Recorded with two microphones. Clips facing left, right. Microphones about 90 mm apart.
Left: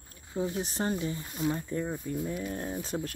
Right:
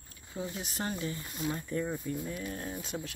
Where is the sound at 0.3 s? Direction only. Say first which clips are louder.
Left 7 dB; 35° left (ahead or behind).